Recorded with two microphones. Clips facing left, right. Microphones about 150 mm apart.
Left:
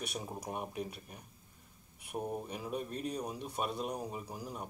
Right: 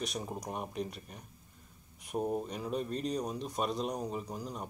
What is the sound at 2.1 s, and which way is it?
Speech, 15° right (ahead or behind).